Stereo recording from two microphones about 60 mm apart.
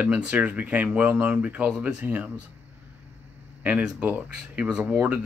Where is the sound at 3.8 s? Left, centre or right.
Centre.